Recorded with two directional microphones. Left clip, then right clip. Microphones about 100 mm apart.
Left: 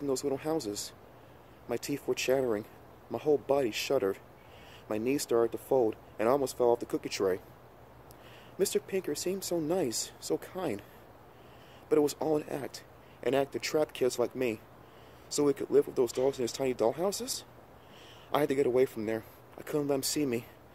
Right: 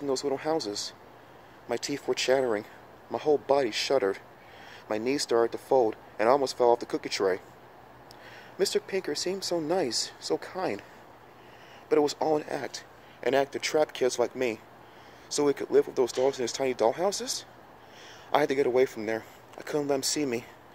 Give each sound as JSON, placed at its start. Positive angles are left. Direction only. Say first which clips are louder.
{"t": 0.0, "sound": "speech", "louder": "right 3 dB", "side_deg": 40}
{"t": 8.5, "sound": "speech", "louder": "right 3 dB", "side_deg": 40}
{"t": 11.9, "sound": "speech", "louder": "right 3 dB", "side_deg": 45}